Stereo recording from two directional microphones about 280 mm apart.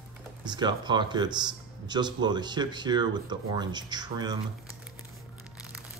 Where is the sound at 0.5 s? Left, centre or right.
Centre.